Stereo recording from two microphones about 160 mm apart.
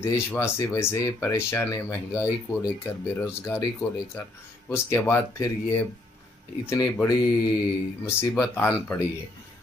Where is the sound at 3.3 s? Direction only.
15° left (ahead or behind).